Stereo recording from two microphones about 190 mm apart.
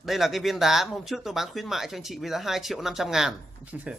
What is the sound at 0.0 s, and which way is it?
Speech, centre (ahead or behind).